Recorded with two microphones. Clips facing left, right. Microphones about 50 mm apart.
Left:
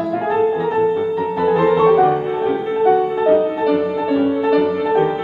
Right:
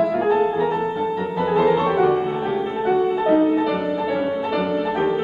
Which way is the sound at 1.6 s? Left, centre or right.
Centre.